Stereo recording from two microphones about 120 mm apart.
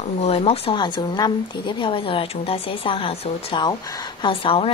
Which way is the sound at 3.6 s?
35° left (ahead or behind).